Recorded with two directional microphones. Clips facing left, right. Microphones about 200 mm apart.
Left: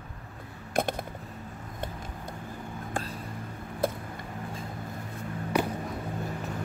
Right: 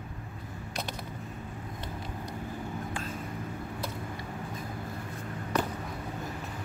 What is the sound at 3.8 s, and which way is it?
Vehicle, 50° left (ahead or behind).